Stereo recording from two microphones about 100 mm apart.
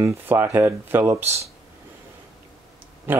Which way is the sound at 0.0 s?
20° right (ahead or behind).